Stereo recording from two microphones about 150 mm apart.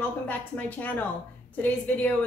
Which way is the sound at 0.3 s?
10° left (ahead or behind).